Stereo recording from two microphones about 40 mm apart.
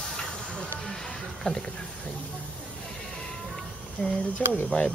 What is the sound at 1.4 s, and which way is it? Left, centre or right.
Speech, left.